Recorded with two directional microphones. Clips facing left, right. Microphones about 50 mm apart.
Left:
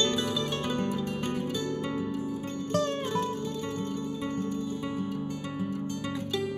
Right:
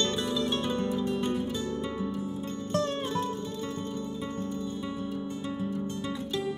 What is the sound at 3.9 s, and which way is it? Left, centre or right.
Music, left.